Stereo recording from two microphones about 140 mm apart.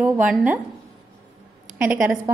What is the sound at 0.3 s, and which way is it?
Speech, 5° right (ahead or behind).